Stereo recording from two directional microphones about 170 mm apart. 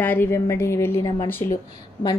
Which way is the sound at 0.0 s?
10° left (ahead or behind).